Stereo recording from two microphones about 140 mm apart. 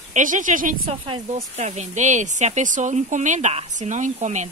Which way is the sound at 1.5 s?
55° right (ahead or behind).